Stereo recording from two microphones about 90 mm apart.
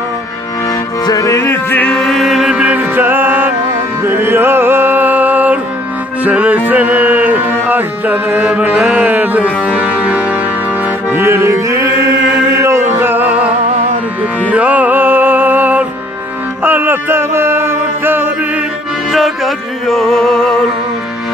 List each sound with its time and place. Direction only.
1.0 s music: 40° left (ahead or behind)
1.9 s music: 5° left (ahead or behind); by 10.2 s 15° right (ahead or behind)
11.1 s music: 30° right (ahead or behind)
14.5 s music: 15° right (ahead or behind)
16.6 s a sound: 25° right (ahead or behind)
19.1 s music: centre (ahead or behind)